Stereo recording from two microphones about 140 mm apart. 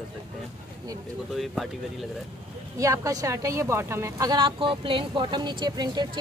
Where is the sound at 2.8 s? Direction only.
20° right (ahead or behind).